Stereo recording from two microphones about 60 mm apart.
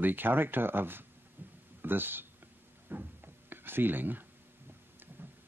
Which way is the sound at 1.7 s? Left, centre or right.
Right.